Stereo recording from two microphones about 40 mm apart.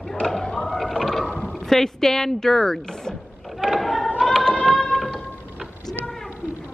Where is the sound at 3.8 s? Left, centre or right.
Centre.